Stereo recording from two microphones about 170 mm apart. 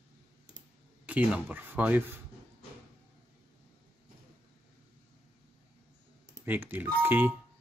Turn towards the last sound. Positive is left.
turn(degrees=-10)  # may be behind; listen again after turning